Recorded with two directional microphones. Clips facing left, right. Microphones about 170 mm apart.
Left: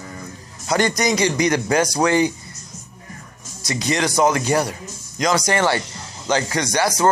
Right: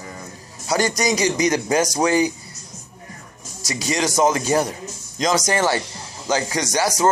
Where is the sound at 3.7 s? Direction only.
20° right (ahead or behind).